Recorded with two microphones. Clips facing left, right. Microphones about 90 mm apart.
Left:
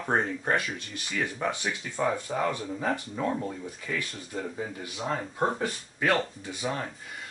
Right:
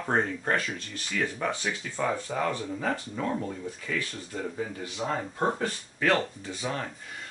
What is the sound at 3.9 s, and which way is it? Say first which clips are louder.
Speech: right 1 dB; 10° left (ahead or behind).